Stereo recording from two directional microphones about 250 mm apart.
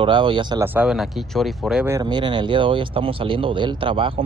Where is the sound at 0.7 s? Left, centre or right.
Centre.